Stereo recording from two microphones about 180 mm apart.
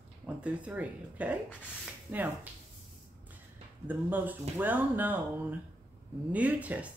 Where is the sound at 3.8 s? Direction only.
10° right (ahead or behind).